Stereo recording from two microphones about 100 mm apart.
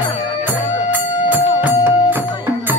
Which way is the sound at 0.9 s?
15° right (ahead or behind).